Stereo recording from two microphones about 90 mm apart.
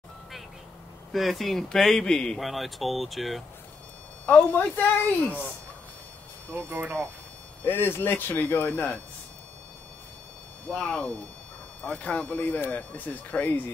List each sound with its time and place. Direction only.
1.1 s speech: centre (ahead or behind)
4.3 s speech: 15° left (ahead or behind)
6.5 s speech: 25° right (ahead or behind)
7.6 s speech: 25° left (ahead or behind)
10.7 s speech: 10° left (ahead or behind)